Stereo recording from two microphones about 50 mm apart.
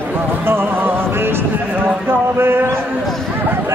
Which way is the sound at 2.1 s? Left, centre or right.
Right.